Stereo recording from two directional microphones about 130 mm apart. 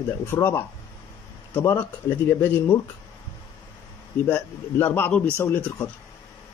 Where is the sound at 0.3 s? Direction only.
20° left (ahead or behind).